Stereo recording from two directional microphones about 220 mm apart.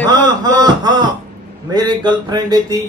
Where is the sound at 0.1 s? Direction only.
20° right (ahead or behind).